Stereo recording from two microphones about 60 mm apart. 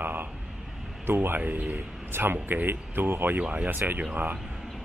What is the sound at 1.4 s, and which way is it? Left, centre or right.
Speech, right.